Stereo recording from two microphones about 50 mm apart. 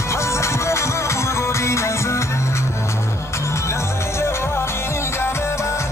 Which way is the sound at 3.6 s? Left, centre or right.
Left.